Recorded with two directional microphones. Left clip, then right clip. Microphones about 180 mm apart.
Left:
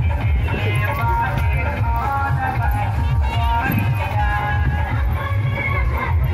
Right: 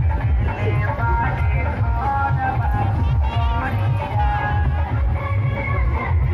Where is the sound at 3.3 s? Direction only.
75° left (ahead or behind).